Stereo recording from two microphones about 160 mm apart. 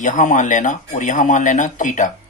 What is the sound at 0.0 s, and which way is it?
Speech, 50° left (ahead or behind).